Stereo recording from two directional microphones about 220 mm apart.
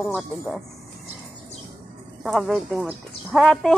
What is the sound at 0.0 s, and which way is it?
Speech, centre (ahead or behind).